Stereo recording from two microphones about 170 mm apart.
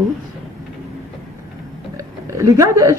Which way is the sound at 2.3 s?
20° right (ahead or behind).